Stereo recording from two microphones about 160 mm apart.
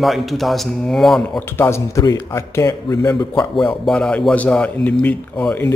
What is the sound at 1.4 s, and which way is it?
A man's voice, 15° left (ahead or behind).